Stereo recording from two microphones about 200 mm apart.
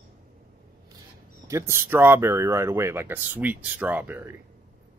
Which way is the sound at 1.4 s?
15° right (ahead or behind).